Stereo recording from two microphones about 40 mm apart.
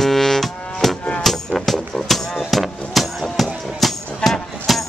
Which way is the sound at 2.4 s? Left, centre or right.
Centre.